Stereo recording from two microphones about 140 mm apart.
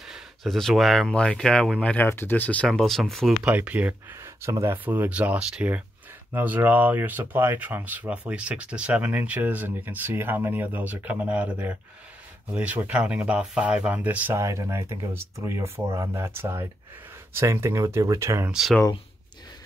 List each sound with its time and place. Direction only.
0.0 s speech: centre (ahead or behind)
3.4 s speech: 10° right (ahead or behind)
14.4 s speech: 20° right (ahead or behind)
18.5 s speech: centre (ahead or behind)